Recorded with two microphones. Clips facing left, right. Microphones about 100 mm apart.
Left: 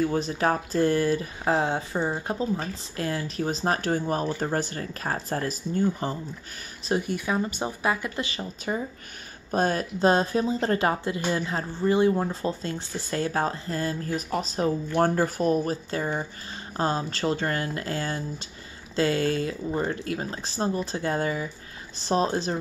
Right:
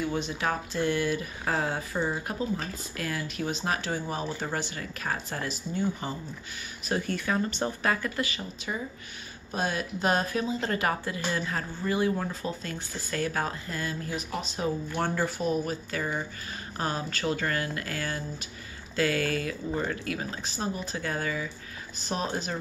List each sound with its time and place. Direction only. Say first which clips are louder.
0.0 s speech: left 5 dB; 40° left (ahead or behind)
6.9 s speech: left 3 dB; 15° left (ahead or behind)
8.3 s speech: left 5 dB; 40° left (ahead or behind)